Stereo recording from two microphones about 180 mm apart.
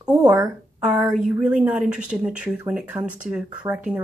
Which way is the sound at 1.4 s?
5° right (ahead or behind).